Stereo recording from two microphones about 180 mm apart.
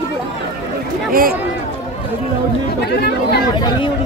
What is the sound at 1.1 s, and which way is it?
Speech, 55° right (ahead or behind).